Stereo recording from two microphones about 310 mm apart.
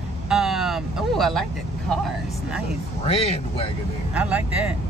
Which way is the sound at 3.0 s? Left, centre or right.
Centre.